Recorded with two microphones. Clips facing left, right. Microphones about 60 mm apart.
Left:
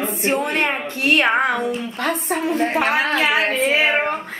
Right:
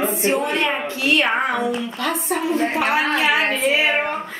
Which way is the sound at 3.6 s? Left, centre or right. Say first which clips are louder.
Left 1 dB; left.